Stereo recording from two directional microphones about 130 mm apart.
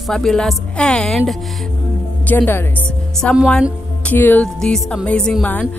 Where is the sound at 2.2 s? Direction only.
15° left (ahead or behind).